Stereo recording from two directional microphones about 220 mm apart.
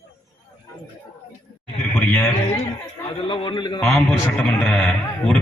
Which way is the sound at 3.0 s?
20° left (ahead or behind).